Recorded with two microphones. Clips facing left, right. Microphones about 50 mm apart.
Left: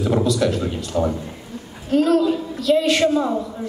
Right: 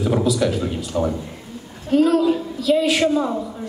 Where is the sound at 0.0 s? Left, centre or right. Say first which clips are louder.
Even; centre.